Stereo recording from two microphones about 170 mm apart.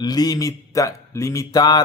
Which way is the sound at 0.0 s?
25° left (ahead or behind).